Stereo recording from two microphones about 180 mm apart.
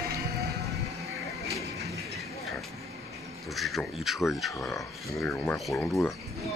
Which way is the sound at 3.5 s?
Centre (ahead or behind).